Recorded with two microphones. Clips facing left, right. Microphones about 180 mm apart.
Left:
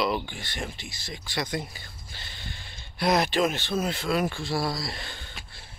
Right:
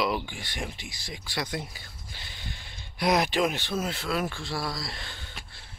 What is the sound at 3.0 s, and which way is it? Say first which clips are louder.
Speech: left 1 dB; 10° right (ahead or behind).